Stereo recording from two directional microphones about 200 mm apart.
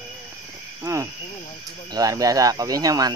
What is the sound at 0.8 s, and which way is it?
Cricket, 15° right (ahead or behind).